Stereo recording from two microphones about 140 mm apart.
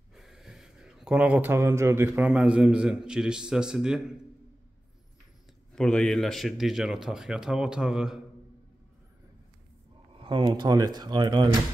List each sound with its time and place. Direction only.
0.1 s speech: centre (ahead or behind)
5.8 s speech: 5° left (ahead or behind)
10.1 s speech: 35° right (ahead or behind)